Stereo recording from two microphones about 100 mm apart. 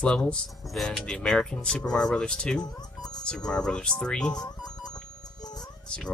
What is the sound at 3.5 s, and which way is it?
Speech, 5° left (ahead or behind).